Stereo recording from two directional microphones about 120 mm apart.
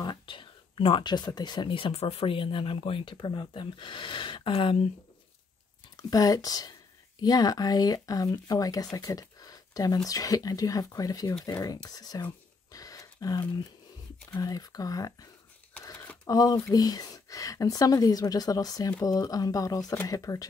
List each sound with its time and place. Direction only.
0.0 s speech: 40° left (ahead or behind)
5.9 s a woman's voice: 30° left (ahead or behind)
8.9 s a sound: 30° left (ahead or behind)
10.0 s a woman's voice: 30° left (ahead or behind)
15.8 s a sound: 25° left (ahead or behind)
16.3 s a woman's voice: 30° left (ahead or behind)